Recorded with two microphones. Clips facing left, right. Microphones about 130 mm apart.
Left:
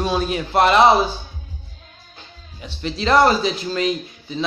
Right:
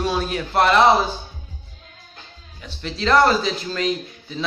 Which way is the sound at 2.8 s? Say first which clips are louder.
Left 1 dB; 10° left (ahead or behind).